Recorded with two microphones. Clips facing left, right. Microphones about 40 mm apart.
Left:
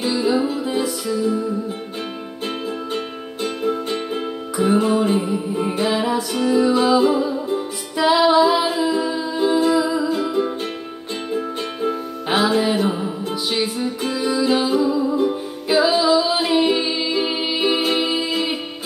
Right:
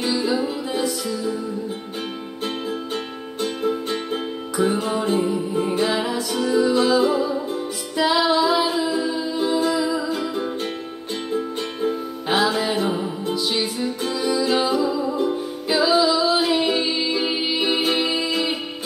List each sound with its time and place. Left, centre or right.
0.0 s music: centre
3.6 s music: centre
11.8 s music: centre